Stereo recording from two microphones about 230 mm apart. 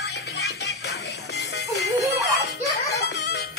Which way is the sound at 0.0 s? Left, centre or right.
Left.